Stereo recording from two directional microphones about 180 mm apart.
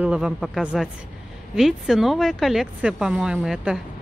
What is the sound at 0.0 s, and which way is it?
Speech, 5° right (ahead or behind).